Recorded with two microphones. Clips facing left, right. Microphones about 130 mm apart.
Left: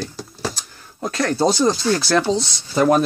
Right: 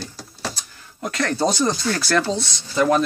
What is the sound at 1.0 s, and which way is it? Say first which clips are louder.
Speech: left 3 dB; 30° left (ahead or behind).